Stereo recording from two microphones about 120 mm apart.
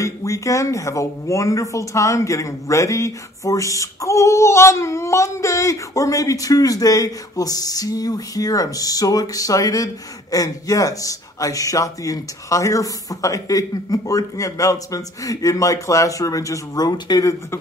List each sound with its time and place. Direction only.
0.0 s speech: 25° left (ahead or behind)